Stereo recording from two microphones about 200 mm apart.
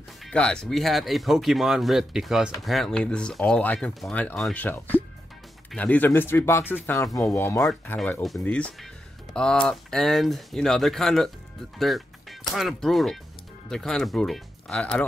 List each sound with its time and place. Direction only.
0.2 s speech: 5° left (ahead or behind)